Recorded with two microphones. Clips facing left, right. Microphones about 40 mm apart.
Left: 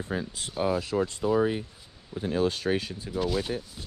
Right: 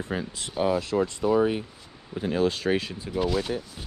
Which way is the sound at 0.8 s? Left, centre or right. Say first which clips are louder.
Right 2 dB; right.